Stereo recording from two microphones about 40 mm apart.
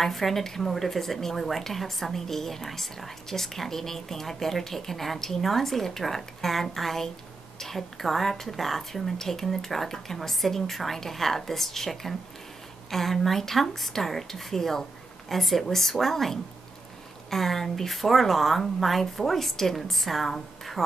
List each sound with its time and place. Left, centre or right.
0.0 s a woman's voice: centre